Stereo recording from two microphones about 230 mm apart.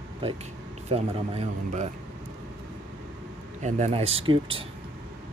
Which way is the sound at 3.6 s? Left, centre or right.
Right.